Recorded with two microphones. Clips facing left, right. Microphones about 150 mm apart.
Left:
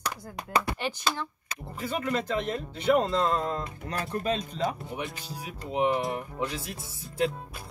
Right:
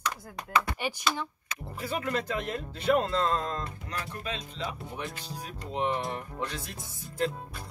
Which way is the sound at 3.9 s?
40° left (ahead or behind).